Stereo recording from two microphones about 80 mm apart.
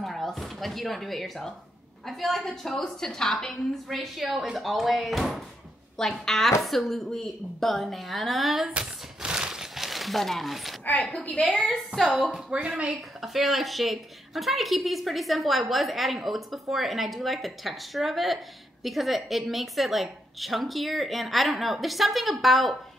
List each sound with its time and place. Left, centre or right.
0.0 s drawer open or close: centre
2.0 s a woman's voice: centre
8.7 s crumpling: centre
11.1 s a woman's voice: centre
11.5 s a woman's voice: centre
13.2 s a woman's voice: centre